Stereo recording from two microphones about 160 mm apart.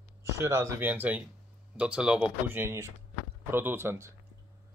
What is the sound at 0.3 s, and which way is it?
Speech, 20° right (ahead or behind).